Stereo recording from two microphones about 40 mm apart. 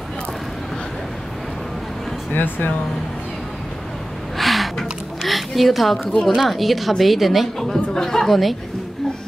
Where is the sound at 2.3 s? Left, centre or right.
Left.